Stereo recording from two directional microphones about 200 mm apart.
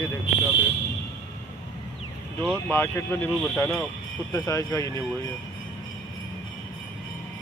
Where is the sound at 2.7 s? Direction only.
10° left (ahead or behind).